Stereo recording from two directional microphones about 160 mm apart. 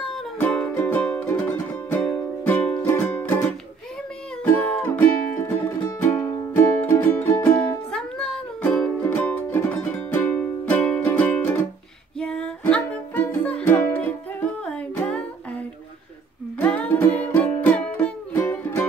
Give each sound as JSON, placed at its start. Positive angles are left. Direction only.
{"t": 0.0, "sound": "music", "side_deg": 5}
{"t": 4.6, "sound": "music", "side_deg": 10}
{"t": 6.5, "sound": "music", "side_deg": 10}
{"t": 16.5, "sound": "music", "side_deg": 10}